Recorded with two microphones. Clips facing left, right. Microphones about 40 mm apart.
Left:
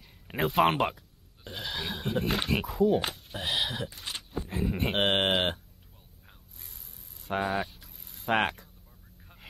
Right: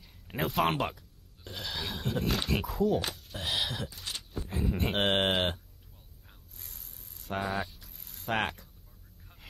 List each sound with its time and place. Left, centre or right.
0.4 s a sound: centre
2.2 s speech: left
2.5 s speech: centre
2.9 s speech: left
3.3 s a sound: centre
4.5 s speech: centre
6.2 s mechanisms: centre
6.7 s a sound: centre
7.2 s speech: centre
7.8 s mechanisms: centre
8.3 s speech: centre
9.3 s vehicle: centre